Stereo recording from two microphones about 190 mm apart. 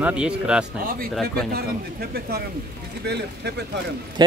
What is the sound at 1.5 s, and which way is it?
Speech, 55° right (ahead or behind).